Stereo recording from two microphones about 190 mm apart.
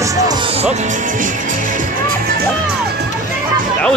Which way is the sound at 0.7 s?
40° right (ahead or behind).